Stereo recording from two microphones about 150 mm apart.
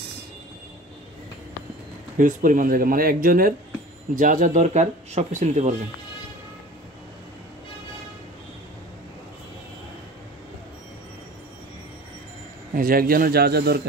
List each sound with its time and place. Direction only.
2.1 s speech: 65° right (ahead or behind)
12.7 s speech: 75° right (ahead or behind); by 13.8 s 90° right